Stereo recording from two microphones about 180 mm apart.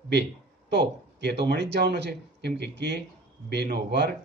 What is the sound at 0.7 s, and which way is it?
A man's voice, 70° right (ahead or behind).